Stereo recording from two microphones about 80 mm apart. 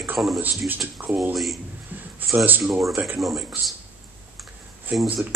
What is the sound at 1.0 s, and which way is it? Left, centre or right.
Speech, right.